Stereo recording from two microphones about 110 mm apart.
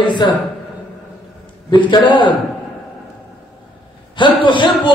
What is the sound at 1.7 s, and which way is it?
Speech, 45° left (ahead or behind).